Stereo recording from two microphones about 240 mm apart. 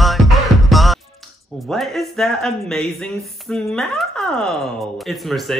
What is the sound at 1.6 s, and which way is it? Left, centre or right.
Speech, centre.